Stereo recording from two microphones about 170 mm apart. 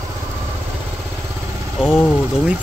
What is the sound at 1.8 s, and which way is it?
Speech, centre (ahead or behind).